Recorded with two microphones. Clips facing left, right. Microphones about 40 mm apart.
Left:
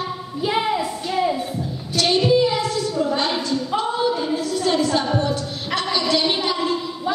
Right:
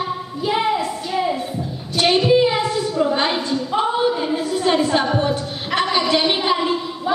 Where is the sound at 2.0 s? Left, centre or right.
Right.